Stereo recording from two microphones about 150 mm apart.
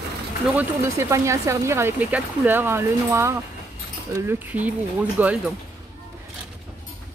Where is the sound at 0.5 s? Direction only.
15° right (ahead or behind).